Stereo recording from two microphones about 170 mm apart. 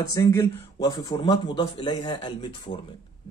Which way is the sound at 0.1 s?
20° left (ahead or behind).